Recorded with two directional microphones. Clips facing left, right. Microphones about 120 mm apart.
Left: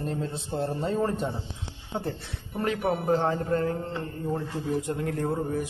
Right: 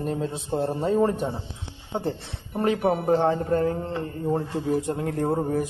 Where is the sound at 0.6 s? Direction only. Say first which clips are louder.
Right 4 dB; 25° right (ahead or behind).